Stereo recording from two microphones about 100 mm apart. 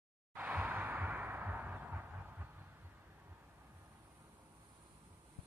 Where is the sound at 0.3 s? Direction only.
15° right (ahead or behind).